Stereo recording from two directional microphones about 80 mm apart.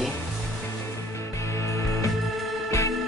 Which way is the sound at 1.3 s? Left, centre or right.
Left.